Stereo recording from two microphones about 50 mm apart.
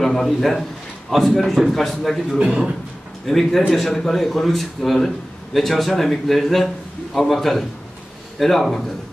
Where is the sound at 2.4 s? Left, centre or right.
Centre.